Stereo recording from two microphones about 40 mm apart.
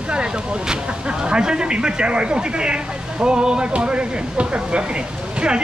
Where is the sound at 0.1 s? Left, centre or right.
Right.